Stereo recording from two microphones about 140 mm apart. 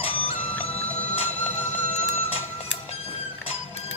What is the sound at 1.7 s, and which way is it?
Music, 55° left (ahead or behind).